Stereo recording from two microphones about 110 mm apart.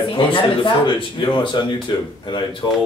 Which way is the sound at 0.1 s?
50° left (ahead or behind).